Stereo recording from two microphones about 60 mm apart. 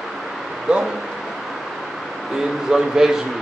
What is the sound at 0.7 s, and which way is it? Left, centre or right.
Speech, centre.